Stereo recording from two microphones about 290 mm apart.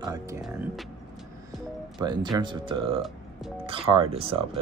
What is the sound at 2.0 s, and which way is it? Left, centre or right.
Speech, centre.